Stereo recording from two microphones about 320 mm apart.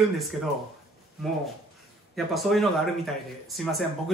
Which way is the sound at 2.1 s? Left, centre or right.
Centre.